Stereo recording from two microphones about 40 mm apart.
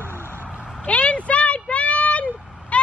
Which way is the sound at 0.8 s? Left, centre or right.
Left.